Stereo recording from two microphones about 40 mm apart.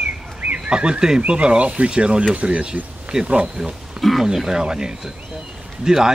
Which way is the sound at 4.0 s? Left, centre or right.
Centre.